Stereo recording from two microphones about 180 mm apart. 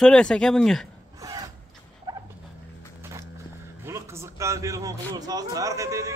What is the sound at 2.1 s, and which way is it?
Fowl, 20° right (ahead or behind).